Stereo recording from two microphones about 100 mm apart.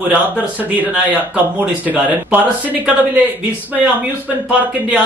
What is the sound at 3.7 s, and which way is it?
Speech, 15° right (ahead or behind).